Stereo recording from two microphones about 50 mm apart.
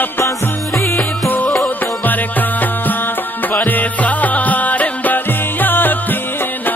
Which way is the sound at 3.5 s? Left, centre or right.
Left.